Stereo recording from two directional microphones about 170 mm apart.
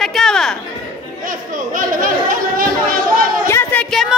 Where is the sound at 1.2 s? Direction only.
50° right (ahead or behind).